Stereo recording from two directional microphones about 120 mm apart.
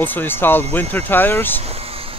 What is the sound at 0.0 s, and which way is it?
Speech, 15° left (ahead or behind).